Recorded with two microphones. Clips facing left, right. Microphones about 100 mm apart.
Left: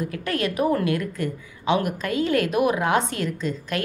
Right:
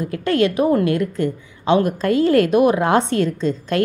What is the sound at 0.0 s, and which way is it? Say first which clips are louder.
A woman's voice: right 8 dB; 30° right (ahead or behind).